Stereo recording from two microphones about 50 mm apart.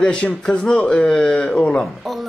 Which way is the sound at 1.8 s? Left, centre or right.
Centre.